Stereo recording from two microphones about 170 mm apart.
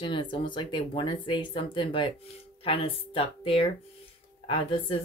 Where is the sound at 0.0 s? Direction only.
30° left (ahead or behind).